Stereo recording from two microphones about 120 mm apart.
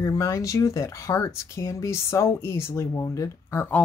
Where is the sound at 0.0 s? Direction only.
25° left (ahead or behind).